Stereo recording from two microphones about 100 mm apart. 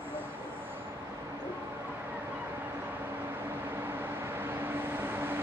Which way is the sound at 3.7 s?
20° right (ahead or behind).